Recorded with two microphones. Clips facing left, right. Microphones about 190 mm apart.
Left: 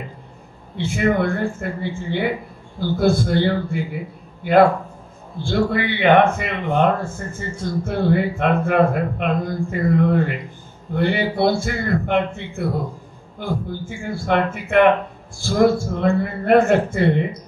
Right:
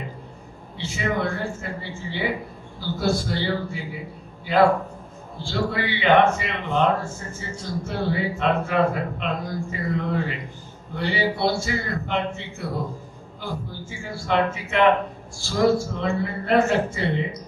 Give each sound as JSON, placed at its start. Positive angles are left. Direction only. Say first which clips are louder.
{"t": 0.7, "sound": "a man's voice", "louder": "left 7 dB", "side_deg": 55}